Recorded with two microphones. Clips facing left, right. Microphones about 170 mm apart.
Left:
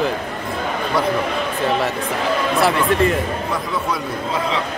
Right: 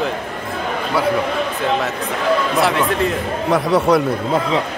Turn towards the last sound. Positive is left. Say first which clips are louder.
# right 9 dB
turn(degrees=-75)  # may be behind; listen again after turning